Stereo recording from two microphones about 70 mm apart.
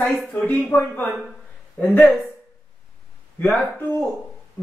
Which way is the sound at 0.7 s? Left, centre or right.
Left.